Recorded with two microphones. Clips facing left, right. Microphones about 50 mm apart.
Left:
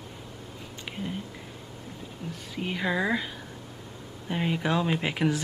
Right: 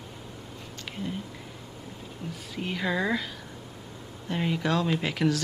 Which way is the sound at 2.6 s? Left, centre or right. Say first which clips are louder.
Left 1 dB; centre.